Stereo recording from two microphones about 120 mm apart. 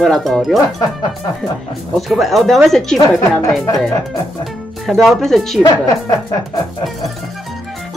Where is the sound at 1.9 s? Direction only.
Centre (ahead or behind).